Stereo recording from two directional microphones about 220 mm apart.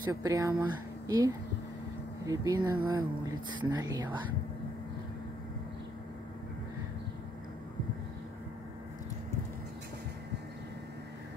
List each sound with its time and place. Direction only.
0.1 s speech: 15° right (ahead or behind)